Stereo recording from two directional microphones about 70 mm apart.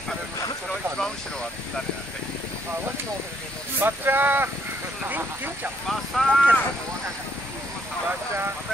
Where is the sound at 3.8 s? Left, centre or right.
Right.